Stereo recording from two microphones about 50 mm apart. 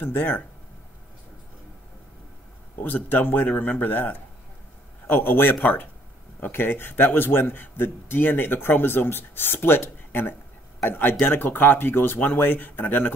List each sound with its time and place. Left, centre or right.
0.0 s speech: left
2.8 s a man's voice: left